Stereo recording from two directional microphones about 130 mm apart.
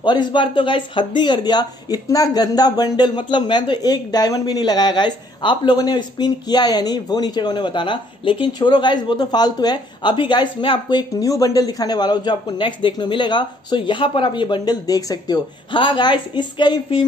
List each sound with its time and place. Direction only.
0.0 s speech: 35° left (ahead or behind)